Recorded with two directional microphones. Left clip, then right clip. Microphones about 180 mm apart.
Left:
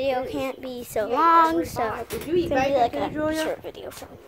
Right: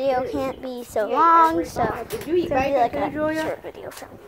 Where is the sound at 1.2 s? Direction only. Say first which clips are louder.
Right 2 dB; 10° left (ahead or behind).